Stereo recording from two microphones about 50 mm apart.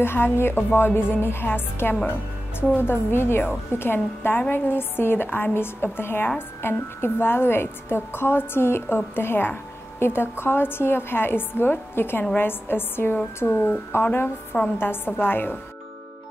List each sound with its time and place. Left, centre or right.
0.0 s a woman's voice: left
13.4 s a woman's voice: left